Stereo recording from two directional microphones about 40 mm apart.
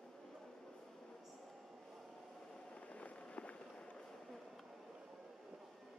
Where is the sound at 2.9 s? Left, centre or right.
Left.